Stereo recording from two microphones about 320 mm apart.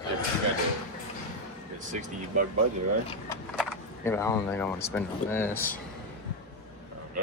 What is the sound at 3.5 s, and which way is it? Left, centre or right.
Speech, centre.